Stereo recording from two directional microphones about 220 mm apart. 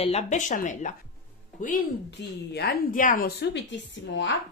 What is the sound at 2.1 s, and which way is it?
A woman's voice, 50° left (ahead or behind).